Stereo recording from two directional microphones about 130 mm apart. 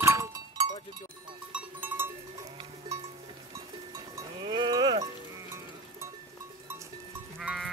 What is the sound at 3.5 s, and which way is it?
Cowbell, 25° right (ahead or behind).